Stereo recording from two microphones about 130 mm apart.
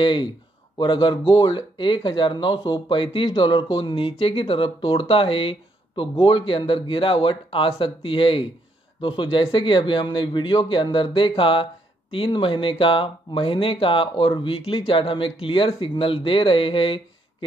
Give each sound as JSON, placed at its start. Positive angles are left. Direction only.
{"t": 0.0, "sound": "speech", "side_deg": 40}